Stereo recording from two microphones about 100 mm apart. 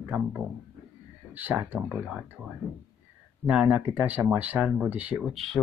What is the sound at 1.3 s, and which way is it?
Speech, 20° right (ahead or behind).